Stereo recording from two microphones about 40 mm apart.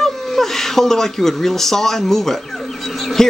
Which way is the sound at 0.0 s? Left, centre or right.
Centre.